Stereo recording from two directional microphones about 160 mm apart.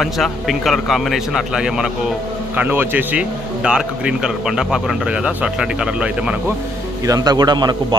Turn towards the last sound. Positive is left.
turn(degrees=-25)  # may be behind; listen again after turning